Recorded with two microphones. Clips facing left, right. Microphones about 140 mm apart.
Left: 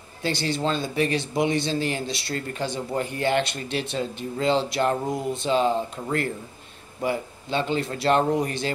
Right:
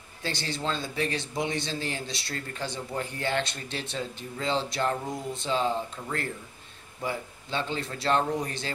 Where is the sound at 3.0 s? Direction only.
65° left (ahead or behind).